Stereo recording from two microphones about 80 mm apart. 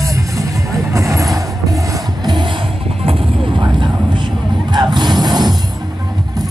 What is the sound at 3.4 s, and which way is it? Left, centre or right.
Vehicle, right.